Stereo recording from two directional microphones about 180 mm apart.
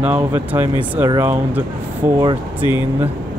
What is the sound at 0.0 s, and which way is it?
Speech, 10° right (ahead or behind).